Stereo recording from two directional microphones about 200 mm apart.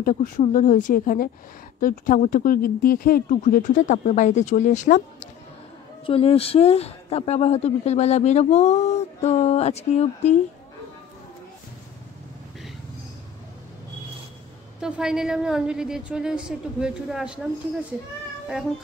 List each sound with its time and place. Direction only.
0.0 s a man's voice: 40° left (ahead or behind)
6.0 s a man's voice: 30° left (ahead or behind)
14.8 s a woman's voice: 5° right (ahead or behind)